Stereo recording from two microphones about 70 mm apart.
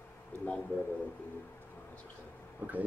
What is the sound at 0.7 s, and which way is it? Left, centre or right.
Speech, left.